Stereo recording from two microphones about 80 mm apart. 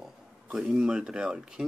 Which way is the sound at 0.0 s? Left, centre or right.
Centre.